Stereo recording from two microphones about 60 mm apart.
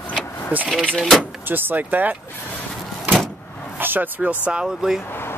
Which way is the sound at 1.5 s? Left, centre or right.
Right.